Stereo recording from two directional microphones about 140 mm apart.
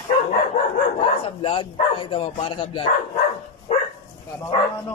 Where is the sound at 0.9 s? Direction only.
40° left (ahead or behind).